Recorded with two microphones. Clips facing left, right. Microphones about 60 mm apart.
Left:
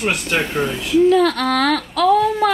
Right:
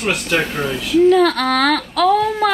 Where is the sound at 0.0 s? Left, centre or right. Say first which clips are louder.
Right 1 dB; centre.